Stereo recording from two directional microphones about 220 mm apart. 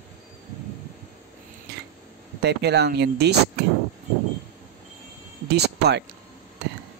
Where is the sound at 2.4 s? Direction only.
50° right (ahead or behind).